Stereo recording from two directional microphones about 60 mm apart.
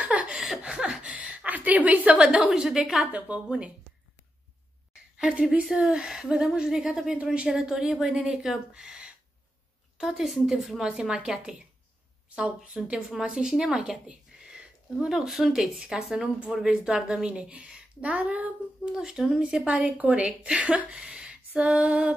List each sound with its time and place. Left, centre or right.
0.0 s a sound: right
3.1 s a woman's voice: right
5.1 s a woman's voice: centre
12.4 s a woman's voice: centre
18.9 s speech: centre